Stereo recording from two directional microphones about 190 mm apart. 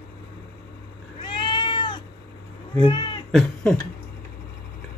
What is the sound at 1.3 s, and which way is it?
Cat, 25° left (ahead or behind).